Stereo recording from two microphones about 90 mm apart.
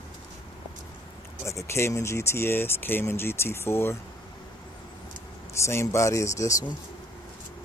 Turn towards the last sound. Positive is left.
turn(degrees=35)  # may be behind; listen again after turning